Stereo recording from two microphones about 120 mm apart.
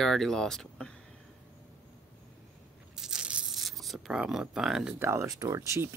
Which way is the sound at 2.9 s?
5° right (ahead or behind).